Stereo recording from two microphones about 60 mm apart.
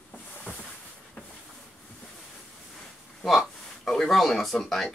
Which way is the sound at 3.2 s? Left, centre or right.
Centre.